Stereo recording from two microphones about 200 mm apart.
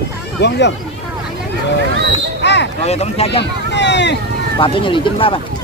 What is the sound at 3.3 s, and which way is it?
Speech, 60° left (ahead or behind).